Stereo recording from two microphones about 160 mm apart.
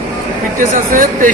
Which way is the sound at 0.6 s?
55° right (ahead or behind).